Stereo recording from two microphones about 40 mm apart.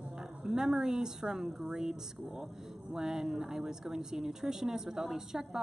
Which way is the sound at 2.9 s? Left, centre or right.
Centre.